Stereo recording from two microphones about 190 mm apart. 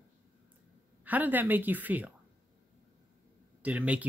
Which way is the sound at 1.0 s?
10° right (ahead or behind).